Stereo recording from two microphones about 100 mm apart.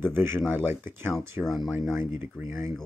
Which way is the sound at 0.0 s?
20° right (ahead or behind).